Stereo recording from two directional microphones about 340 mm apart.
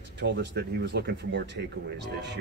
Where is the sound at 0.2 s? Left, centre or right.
Right.